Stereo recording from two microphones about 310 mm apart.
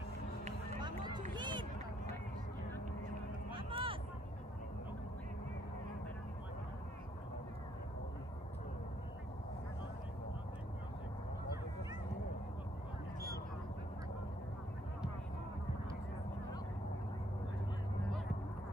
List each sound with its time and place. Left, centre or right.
0.5 s run: centre
3.5 s vehicle: centre